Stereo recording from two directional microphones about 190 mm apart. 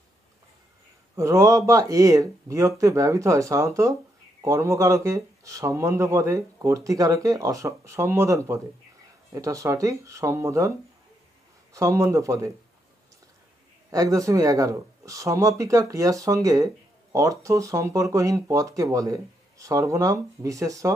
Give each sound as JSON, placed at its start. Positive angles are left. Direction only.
{"t": 1.1, "sound": "speech", "side_deg": -15}
{"t": 11.7, "sound": "speech", "side_deg": -15}
{"t": 13.9, "sound": "speech", "side_deg": -15}